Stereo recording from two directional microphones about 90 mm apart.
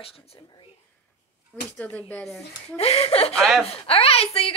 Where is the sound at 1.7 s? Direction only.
20° left (ahead or behind).